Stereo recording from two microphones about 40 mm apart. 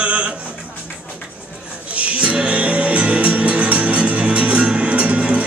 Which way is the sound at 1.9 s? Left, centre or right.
Right.